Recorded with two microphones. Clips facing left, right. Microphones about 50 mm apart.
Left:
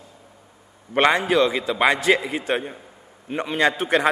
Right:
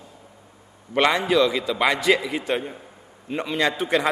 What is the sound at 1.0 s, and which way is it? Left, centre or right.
A man's voice, left.